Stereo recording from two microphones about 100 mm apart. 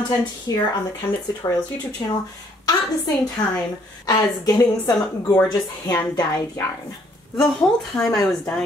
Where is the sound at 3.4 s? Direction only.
45° left (ahead or behind).